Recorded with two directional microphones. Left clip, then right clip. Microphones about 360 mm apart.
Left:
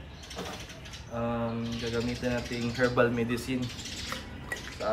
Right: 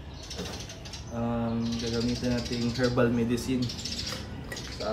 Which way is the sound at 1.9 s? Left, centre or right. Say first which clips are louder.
Even; centre.